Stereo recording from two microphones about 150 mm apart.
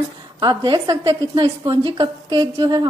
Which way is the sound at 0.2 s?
25° right (ahead or behind).